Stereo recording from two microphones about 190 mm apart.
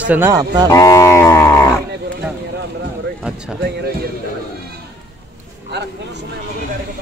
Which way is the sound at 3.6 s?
60° right (ahead or behind).